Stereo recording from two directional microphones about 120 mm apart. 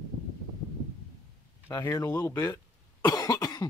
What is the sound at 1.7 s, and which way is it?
Speech, 25° left (ahead or behind).